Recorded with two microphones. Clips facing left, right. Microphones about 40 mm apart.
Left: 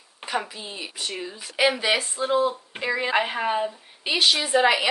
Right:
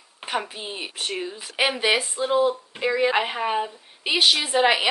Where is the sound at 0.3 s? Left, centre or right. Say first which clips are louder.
Right 1 dB; right.